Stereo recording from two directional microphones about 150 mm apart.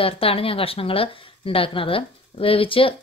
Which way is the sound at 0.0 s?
40° left (ahead or behind).